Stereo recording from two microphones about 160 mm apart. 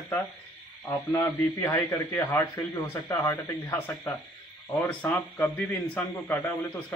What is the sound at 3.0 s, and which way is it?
Speech, 25° left (ahead or behind).